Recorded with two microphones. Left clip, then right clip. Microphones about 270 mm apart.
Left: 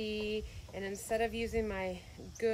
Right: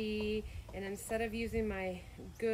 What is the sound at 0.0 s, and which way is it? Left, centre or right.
A woman's voice, centre.